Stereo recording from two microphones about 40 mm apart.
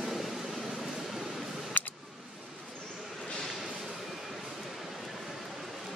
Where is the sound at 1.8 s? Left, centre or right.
Left.